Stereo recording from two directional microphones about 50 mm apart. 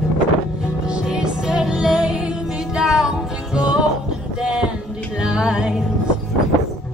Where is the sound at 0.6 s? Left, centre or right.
Centre.